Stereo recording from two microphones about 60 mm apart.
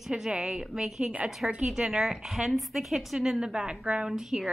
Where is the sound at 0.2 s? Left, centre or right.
Centre.